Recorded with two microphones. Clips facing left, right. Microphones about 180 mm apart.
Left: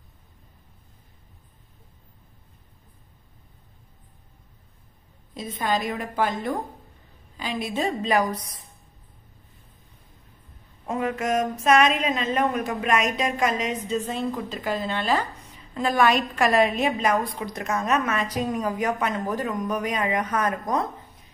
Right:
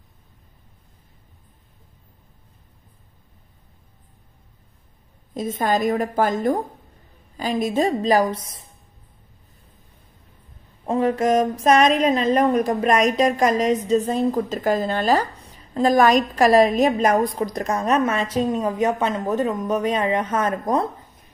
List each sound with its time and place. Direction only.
5.3 s a woman's voice: 45° right (ahead or behind); by 8.6 s 25° right (ahead or behind)
10.9 s a woman's voice: 30° right (ahead or behind)